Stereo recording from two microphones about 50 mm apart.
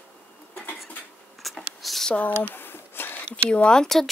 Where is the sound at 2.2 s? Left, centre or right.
Left.